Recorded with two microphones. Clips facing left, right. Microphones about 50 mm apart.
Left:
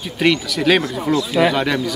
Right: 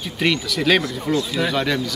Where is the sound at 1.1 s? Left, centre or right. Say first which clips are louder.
Left 3 dB; left.